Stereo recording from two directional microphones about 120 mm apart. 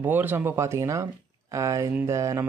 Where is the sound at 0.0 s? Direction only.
15° right (ahead or behind).